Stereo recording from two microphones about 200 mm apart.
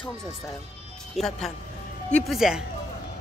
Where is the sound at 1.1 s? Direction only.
Centre (ahead or behind).